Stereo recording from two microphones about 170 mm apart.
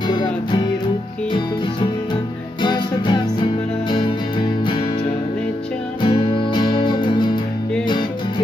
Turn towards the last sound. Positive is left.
turn(degrees=25)  # may be behind; listen again after turning